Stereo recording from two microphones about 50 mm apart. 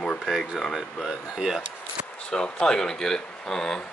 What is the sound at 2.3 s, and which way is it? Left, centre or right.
Speech, centre.